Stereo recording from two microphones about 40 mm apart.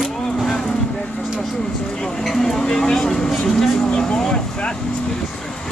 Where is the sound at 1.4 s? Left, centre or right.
Centre.